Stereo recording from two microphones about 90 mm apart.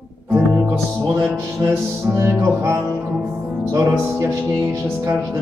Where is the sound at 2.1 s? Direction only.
25° right (ahead or behind).